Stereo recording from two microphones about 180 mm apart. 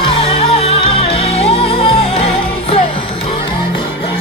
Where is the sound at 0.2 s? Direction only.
35° left (ahead or behind).